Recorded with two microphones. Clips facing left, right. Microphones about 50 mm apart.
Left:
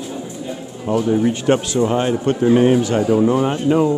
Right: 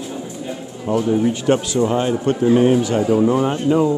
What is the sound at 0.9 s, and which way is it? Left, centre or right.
Speech, left.